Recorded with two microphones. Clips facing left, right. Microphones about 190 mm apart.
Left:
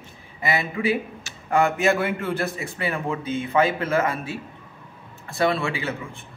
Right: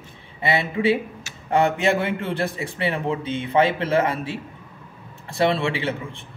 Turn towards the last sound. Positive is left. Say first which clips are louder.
# right 2 dB
turn(degrees=-30)  # may be behind; listen again after turning